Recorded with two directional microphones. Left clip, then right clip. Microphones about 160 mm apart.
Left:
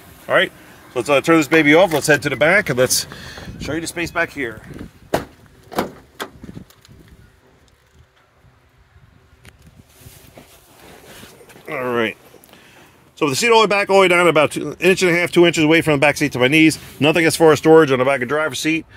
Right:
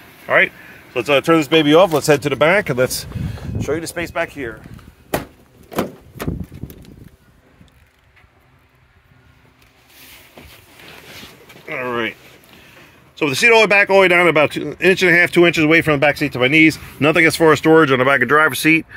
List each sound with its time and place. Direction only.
0.3 s speech: 20° left (ahead or behind)
0.9 s speech: 5° left (ahead or behind); by 2.6 s 10° right (ahead or behind)
2.8 s speech: 20° left (ahead or behind)
3.3 s speech: 10° right (ahead or behind)
5.7 s vehicle: 40° right (ahead or behind)
11.6 s a sound: 40° left (ahead or behind)
13.1 s speech: 25° left (ahead or behind)
13.5 s speech: 10° left (ahead or behind)
17.9 s speech: 10° right (ahead or behind)